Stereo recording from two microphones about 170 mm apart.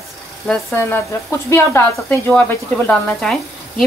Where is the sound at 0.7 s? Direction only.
15° left (ahead or behind).